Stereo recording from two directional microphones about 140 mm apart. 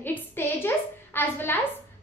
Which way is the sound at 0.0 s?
15° left (ahead or behind).